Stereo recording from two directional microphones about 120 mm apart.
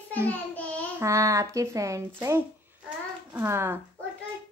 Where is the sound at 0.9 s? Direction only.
25° right (ahead or behind).